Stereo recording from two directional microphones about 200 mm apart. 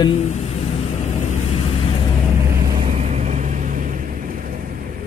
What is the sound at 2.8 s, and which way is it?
Vehicle, 35° right (ahead or behind).